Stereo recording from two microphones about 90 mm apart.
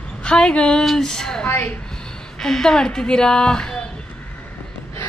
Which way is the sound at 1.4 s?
25° left (ahead or behind).